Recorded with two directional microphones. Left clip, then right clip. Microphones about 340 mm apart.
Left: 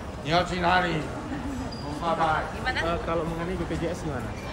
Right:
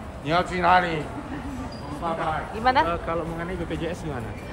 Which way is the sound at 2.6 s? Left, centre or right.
Centre.